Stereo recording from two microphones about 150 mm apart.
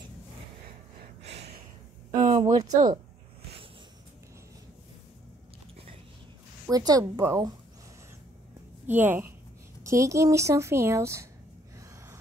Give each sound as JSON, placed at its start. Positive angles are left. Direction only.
{"t": 2.4, "sound": "a woman's voice", "side_deg": -25}
{"t": 6.7, "sound": "a woman's voice", "side_deg": -25}
{"t": 8.8, "sound": "a woman's voice", "side_deg": -15}